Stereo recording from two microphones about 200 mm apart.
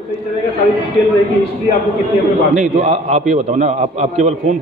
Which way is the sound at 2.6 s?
30° right (ahead or behind).